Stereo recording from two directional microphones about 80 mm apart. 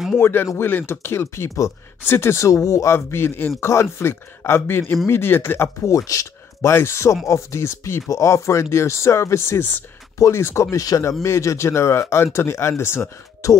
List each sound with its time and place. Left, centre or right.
0.2 s a man's voice: left
2.9 s a man's voice: left
5.9 s speech: left
6.7 s a man's voice: left